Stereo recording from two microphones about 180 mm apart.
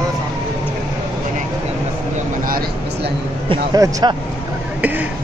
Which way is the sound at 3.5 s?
20° right (ahead or behind).